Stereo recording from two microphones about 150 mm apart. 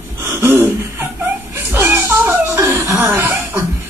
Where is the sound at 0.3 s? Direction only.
15° right (ahead or behind).